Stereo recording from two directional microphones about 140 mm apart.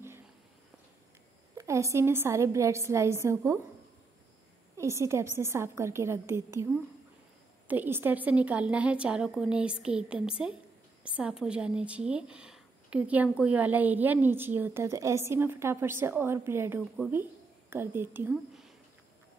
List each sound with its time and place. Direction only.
1.6 s a woman's voice: 20° right (ahead or behind)
4.7 s a woman's voice: 20° right (ahead or behind)
18.3 s speech: centre (ahead or behind)